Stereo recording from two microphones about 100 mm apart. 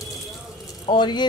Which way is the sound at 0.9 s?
50° left (ahead or behind).